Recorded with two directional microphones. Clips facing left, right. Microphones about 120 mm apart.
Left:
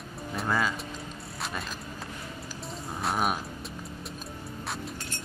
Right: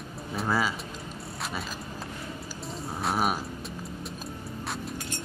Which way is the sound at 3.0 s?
Centre (ahead or behind).